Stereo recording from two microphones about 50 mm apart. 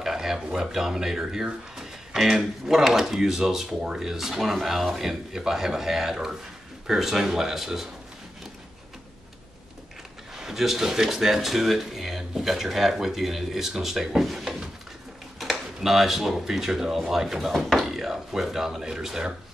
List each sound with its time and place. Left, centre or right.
0.0 s a sound: centre
0.4 s speech: centre
10.3 s speech: centre